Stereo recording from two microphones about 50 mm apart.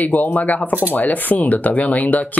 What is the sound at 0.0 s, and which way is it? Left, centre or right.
Speech, left.